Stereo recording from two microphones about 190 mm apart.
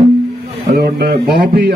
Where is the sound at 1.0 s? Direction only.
60° right (ahead or behind).